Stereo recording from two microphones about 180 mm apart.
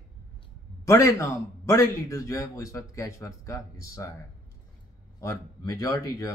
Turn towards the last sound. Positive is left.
turn(degrees=20)  # may be behind; listen again after turning